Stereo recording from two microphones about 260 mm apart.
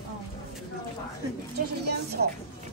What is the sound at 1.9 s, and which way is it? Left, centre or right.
Music, right.